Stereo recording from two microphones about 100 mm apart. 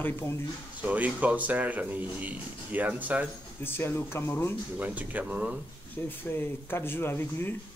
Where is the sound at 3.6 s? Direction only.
25° left (ahead or behind).